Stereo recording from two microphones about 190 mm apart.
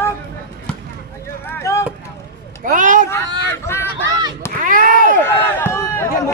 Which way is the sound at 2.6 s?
45° right (ahead or behind).